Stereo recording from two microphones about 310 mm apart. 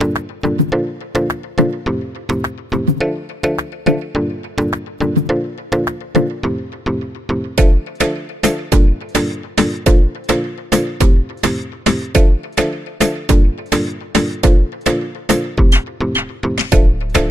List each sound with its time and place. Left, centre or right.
0.0 s music: centre